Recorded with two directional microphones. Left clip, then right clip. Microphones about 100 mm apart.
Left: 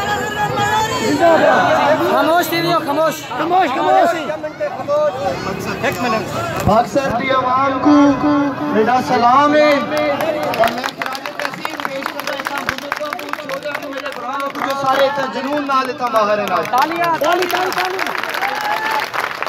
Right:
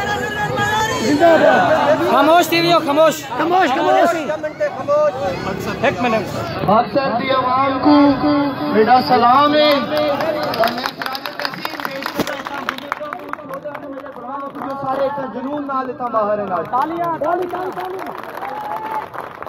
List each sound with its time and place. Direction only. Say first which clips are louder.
0.0 s chatter: left 2 dB; 25° right (ahead or behind)
2.1 s a man's voice: right 2 dB; 50° right (ahead or behind)
3.4 s speech: even; 90° right
6.7 s speech: even; 5° left (ahead or behind)
7.2 s a man's voice: left 2 dB; 25° right (ahead or behind)
10.4 s run: left 2 dB; 15° right (ahead or behind)
14.9 s a man's voice: left 5 dB; 10° right (ahead or behind)